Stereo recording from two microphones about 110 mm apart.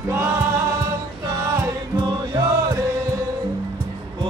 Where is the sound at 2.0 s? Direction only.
35° right (ahead or behind).